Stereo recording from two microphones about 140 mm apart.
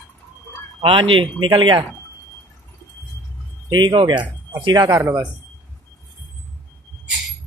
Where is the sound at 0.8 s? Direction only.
40° right (ahead or behind).